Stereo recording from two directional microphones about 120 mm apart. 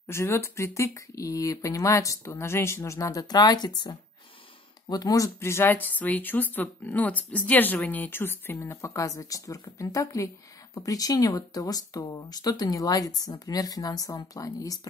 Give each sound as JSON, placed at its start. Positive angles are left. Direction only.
{"t": 0.0, "sound": "speech", "side_deg": 20}